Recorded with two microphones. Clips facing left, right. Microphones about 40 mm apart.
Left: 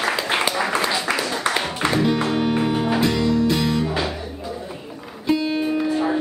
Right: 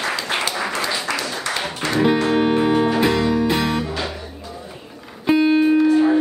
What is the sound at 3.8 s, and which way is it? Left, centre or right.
Music, centre.